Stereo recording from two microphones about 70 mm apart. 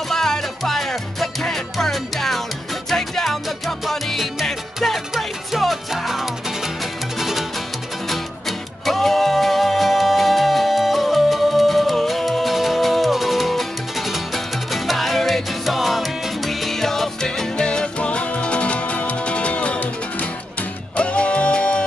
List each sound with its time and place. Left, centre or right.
0.1 s music: centre